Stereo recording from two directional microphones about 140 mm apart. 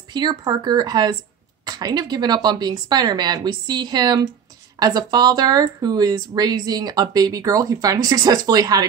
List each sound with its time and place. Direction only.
0.1 s speech: 30° right (ahead or behind)